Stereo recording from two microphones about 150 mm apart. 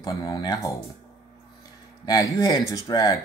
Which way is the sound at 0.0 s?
25° left (ahead or behind).